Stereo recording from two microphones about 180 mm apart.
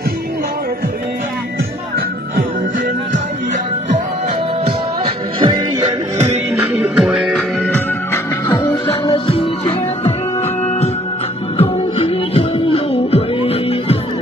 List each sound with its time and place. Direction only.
5.0 s music: 25° right (ahead or behind)
6.6 s music: 5° right (ahead or behind)
9.1 s music: 30° left (ahead or behind)
11.5 s music: 35° left (ahead or behind)